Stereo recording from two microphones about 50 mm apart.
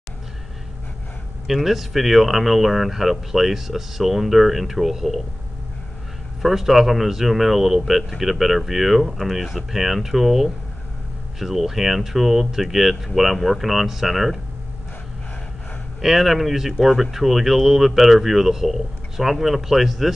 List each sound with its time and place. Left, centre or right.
1.5 s speech: centre
6.4 s speech: centre
16.0 s speech: centre